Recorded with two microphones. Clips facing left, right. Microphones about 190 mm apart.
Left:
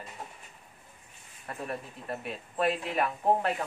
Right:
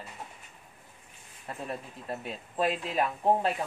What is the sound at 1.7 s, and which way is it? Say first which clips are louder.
Speech: even; 25° right (ahead or behind).